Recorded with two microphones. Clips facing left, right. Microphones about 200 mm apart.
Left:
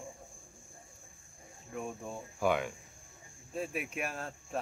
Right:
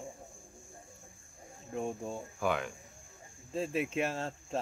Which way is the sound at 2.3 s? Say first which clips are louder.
Left 3 dB; 5° left (ahead or behind).